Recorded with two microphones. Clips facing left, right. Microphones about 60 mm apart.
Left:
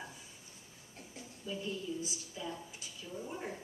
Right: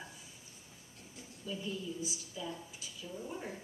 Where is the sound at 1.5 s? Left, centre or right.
Centre.